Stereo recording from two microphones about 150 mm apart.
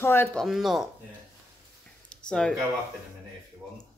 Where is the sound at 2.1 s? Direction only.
5° left (ahead or behind).